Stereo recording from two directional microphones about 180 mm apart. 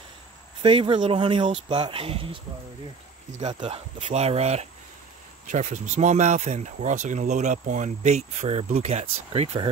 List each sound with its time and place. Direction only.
0.6 s speech: 30° right (ahead or behind)
3.5 s speech: 30° right (ahead or behind)